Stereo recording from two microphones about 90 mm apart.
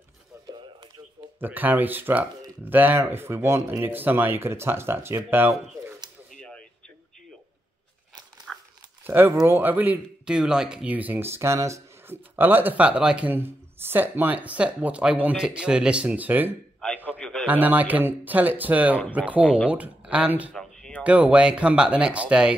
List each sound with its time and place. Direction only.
1.4 s speech: 20° right (ahead or behind)
8.5 s dog: centre (ahead or behind)
9.0 s speech: 25° right (ahead or behind)
10.2 s speech: 10° right (ahead or behind); by 12.2 s 35° right (ahead or behind)
12.4 s speech: 20° right (ahead or behind)
16.8 s a sound: 5° left (ahead or behind)
17.2 s radio: 5° left (ahead or behind)
17.5 s speech: 20° right (ahead or behind)
20.5 s a sound: 5° left (ahead or behind)
21.0 s speech: 15° right (ahead or behind)